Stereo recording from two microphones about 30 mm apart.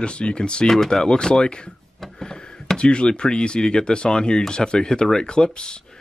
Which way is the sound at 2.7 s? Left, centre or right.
Left.